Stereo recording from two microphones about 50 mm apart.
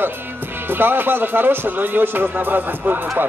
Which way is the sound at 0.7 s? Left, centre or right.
Right.